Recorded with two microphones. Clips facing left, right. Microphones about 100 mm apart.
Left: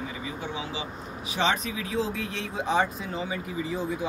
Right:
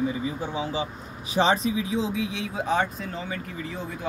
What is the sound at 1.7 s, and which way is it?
Speech, 20° right (ahead or behind).